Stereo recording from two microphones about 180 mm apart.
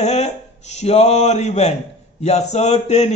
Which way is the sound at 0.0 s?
35° left (ahead or behind).